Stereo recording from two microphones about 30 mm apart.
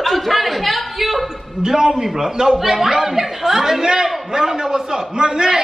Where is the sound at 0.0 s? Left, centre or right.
Centre.